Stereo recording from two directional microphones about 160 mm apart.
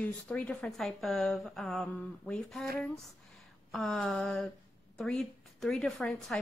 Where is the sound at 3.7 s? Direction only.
5° left (ahead or behind).